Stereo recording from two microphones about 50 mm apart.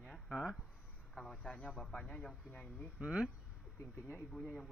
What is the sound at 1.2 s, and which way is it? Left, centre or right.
Speech, centre.